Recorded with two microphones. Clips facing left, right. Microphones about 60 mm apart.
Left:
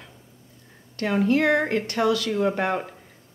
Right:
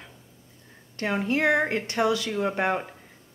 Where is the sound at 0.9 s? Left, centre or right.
Centre.